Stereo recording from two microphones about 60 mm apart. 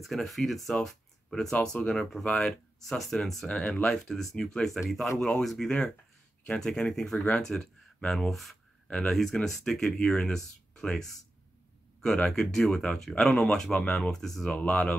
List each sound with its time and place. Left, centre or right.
0.0 s speech: centre
3.0 s speech: centre
8.8 s speech: centre
12.3 s speech: centre